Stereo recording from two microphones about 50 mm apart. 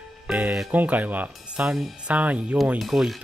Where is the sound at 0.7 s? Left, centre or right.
Right.